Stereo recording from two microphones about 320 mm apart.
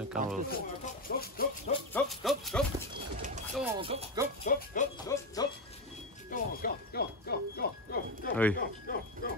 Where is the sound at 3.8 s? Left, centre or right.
Centre.